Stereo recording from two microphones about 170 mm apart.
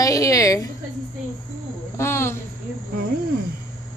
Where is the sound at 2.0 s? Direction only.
15° left (ahead or behind).